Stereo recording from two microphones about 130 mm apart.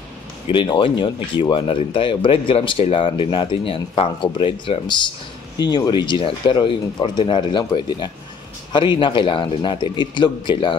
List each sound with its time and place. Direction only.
0.5 s speech: 40° left (ahead or behind)